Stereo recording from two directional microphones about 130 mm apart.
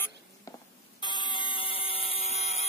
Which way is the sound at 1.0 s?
35° left (ahead or behind).